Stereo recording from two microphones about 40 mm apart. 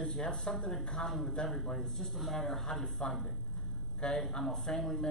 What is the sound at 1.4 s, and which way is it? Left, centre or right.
A woman's voice, centre.